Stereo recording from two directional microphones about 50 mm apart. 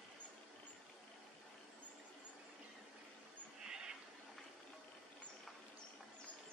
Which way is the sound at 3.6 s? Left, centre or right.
Centre.